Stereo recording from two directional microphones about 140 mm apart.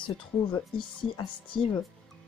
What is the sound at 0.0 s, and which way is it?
Speech, 35° left (ahead or behind).